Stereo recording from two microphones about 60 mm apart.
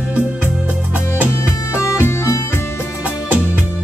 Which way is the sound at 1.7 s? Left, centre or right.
Left.